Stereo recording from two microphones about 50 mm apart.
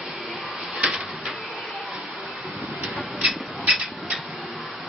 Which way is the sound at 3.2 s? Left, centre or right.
Right.